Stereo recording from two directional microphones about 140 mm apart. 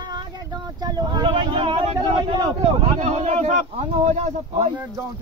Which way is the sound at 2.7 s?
55° right (ahead or behind).